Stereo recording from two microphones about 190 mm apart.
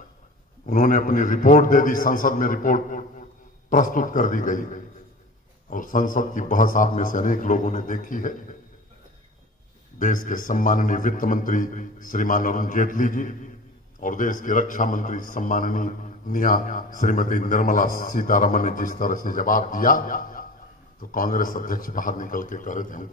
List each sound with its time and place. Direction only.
0.7 s a man's voice: 45° left (ahead or behind)
9.9 s a man's voice: 45° left (ahead or behind)